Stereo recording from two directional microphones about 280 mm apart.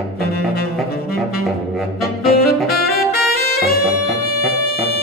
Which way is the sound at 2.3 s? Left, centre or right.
Left.